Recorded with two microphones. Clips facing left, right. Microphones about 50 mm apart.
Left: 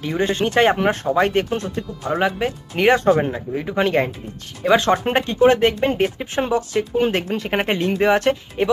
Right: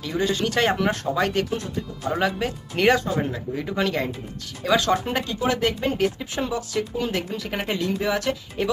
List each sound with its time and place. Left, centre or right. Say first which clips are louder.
0.0 s speech: left 4 dB; left
2.0 s speech: left 3 dB; left